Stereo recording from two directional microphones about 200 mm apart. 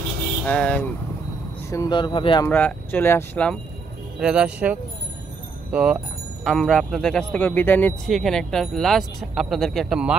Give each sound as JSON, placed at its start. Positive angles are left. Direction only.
{"t": 0.5, "sound": "speech", "side_deg": 5}
{"t": 1.7, "sound": "speech", "side_deg": 20}
{"t": 2.5, "sound": "speech", "side_deg": 10}
{"t": 4.2, "sound": "a man's voice", "side_deg": -5}